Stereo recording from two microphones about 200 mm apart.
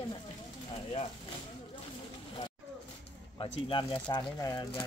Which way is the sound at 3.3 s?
25° left (ahead or behind).